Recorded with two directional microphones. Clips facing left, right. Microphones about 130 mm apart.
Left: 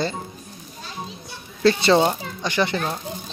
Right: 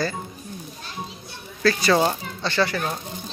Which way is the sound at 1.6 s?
25° left (ahead or behind).